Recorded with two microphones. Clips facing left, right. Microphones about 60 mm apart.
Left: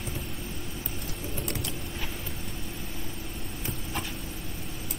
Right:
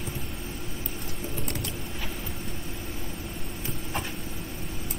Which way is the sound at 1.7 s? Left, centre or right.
Centre.